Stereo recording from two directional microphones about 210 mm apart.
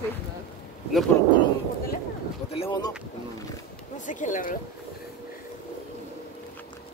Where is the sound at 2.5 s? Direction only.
25° left (ahead or behind).